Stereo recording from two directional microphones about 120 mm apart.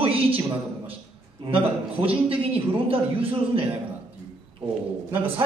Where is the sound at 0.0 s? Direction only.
50° right (ahead or behind).